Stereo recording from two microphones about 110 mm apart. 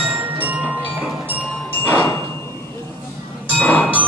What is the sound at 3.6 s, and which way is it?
Music, 15° left (ahead or behind).